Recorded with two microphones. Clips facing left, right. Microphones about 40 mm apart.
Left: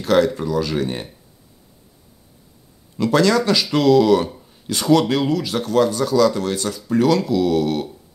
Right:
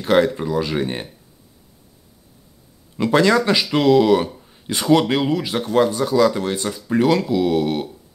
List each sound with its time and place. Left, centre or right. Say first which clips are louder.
0.0 s speech: even; centre
3.0 s speech: right 1 dB; centre